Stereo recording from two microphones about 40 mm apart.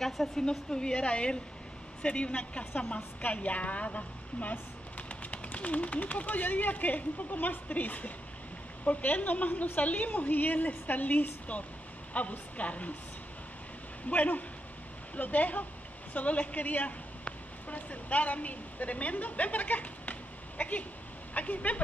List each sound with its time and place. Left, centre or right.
0.4 s speech: centre
2.9 s a woman's voice: left
14.0 s a woman's voice: left